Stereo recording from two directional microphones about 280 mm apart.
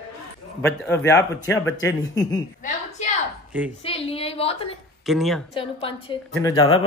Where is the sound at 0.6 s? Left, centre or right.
Centre.